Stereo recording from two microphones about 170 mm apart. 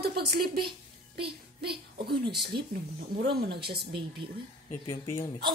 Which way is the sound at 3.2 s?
70° right (ahead or behind).